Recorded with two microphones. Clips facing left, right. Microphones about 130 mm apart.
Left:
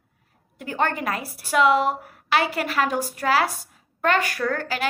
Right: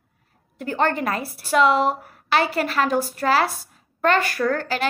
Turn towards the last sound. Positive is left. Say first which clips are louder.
# right 2 dB
turn(degrees=10)  # may be behind; listen again after turning